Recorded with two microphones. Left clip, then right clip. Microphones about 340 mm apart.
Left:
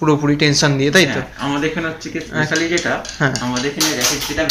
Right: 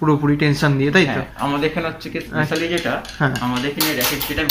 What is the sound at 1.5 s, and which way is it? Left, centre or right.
Speech, centre.